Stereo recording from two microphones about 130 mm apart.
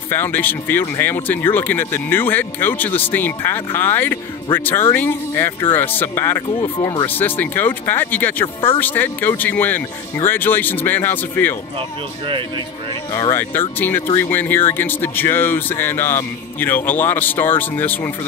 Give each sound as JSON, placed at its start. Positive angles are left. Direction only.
{"t": 0.1, "sound": "speech", "side_deg": 15}
{"t": 13.1, "sound": "speech", "side_deg": 25}